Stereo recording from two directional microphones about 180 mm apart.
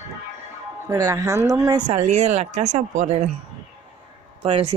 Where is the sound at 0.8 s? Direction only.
20° right (ahead or behind).